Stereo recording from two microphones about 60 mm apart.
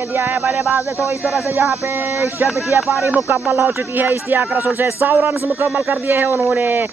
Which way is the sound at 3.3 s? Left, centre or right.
Right.